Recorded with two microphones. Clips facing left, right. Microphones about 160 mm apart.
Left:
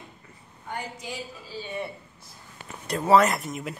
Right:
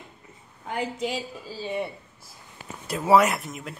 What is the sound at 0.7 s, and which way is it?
Speech, 90° right.